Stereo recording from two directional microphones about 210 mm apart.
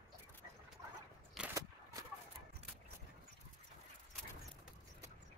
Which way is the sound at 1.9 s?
15° right (ahead or behind).